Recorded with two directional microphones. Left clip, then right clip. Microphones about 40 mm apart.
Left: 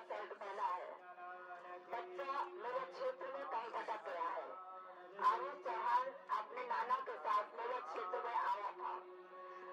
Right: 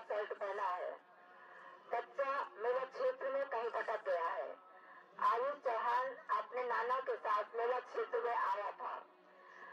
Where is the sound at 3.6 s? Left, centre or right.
Centre.